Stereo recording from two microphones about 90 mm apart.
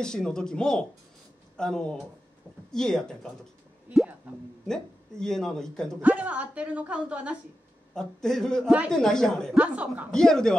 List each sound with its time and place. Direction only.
0.0 s speech: 10° left (ahead or behind)
4.6 s speech: 5° left (ahead or behind)
6.0 s a woman's voice: 15° right (ahead or behind)
7.9 s speech: 5° left (ahead or behind)
9.6 s a woman's voice: 15° right (ahead or behind)
10.1 s speech: 5° left (ahead or behind)